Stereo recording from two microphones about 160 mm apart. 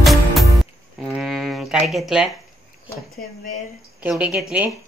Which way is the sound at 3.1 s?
55° left (ahead or behind).